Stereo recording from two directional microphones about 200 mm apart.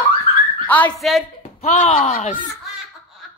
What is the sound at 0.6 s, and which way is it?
Speech, 5° left (ahead or behind).